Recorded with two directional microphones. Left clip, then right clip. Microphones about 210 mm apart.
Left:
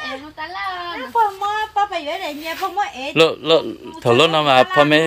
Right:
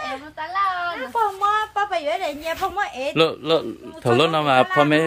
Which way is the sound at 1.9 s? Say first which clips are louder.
Right 1 dB; 30° right (ahead or behind).